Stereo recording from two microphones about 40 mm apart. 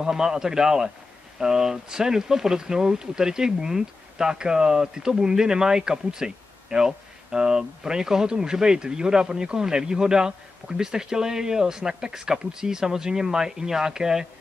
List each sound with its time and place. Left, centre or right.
0.0 s speech: centre